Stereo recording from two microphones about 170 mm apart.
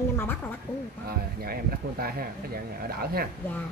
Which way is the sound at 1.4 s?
60° right (ahead or behind).